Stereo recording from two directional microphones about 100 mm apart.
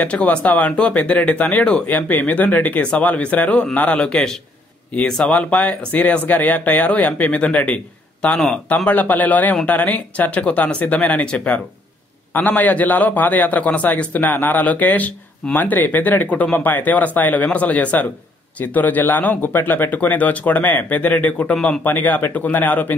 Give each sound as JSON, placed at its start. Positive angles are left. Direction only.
{"t": 0.0, "sound": "speech", "side_deg": 10}